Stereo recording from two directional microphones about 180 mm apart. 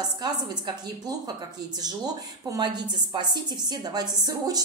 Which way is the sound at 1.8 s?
20° right (ahead or behind).